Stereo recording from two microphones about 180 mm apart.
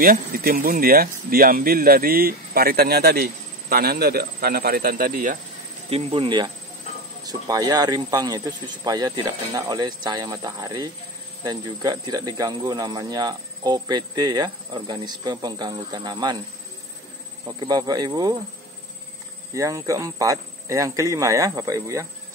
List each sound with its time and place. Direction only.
0.0 s speech: 55° right (ahead or behind)
5.9 s speech: 30° right (ahead or behind)
17.5 s speech: 20° right (ahead or behind)
19.5 s speech: 20° right (ahead or behind)